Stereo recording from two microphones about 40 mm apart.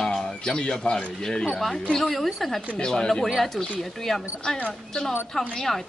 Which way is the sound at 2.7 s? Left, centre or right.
Centre.